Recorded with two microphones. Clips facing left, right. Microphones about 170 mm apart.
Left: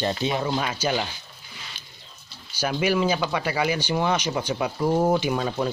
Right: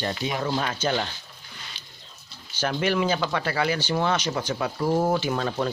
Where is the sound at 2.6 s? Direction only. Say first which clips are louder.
Left 1 dB; 10° left (ahead or behind).